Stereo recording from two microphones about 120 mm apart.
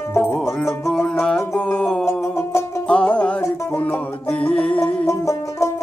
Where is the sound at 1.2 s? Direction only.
10° left (ahead or behind).